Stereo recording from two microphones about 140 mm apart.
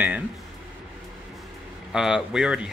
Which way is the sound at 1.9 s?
5° right (ahead or behind).